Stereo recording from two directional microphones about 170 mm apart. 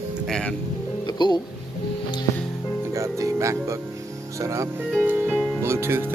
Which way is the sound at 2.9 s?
20° right (ahead or behind).